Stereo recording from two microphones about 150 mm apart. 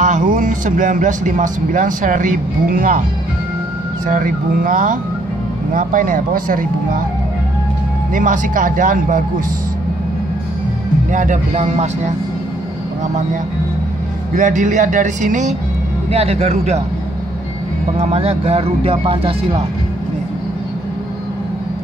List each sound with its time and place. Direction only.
0.0 s speech: 60° right (ahead or behind)
4.1 s speech: 65° right (ahead or behind)
8.1 s speech: 60° right (ahead or behind)
11.1 s speech: 55° right (ahead or behind)
14.3 s speech: 55° right (ahead or behind)
16.1 s speech: 40° right (ahead or behind)
17.9 s speech: 45° right (ahead or behind)